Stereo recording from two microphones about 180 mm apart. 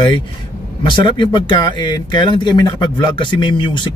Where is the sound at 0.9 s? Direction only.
25° left (ahead or behind).